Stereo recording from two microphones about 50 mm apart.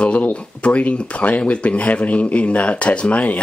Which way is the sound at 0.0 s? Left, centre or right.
Left.